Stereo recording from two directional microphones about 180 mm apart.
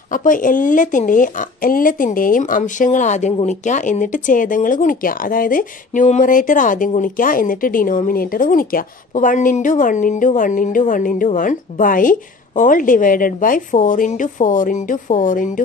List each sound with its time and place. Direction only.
0.1 s speech: 45° left (ahead or behind)